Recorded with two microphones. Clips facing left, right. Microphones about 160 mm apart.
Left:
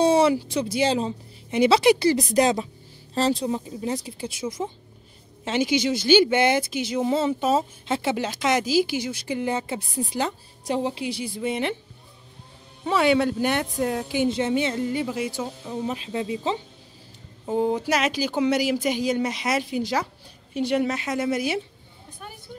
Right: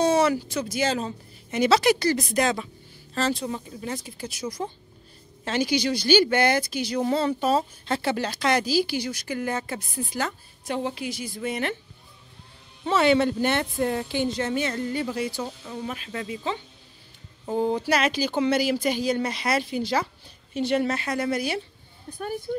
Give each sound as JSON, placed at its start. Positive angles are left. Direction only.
{"t": 0.0, "sound": "a sound", "side_deg": 30}
{"t": 0.5, "sound": "speech", "side_deg": 30}
{"t": 7.4, "sound": "speech", "side_deg": 10}
{"t": 8.0, "sound": "a woman's voice", "side_deg": 20}
{"t": 11.4, "sound": "speech", "side_deg": 20}
{"t": 12.8, "sound": "speech", "side_deg": 10}
{"t": 14.3, "sound": "speech", "side_deg": 20}
{"t": 15.6, "sound": "speech", "side_deg": 20}